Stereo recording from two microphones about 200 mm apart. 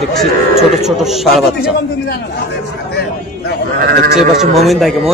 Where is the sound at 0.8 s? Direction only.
Centre (ahead or behind).